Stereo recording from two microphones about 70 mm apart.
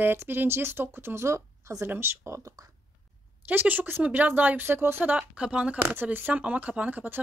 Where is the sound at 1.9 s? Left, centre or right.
Right.